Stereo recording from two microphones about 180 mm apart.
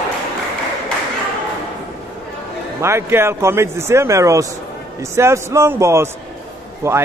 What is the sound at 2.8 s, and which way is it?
Speech, 15° right (ahead or behind).